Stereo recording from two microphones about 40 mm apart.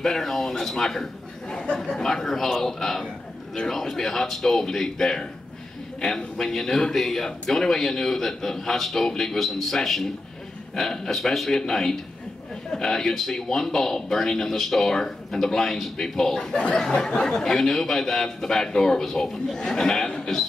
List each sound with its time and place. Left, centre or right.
0.0 s speech: centre
2.2 s speech: centre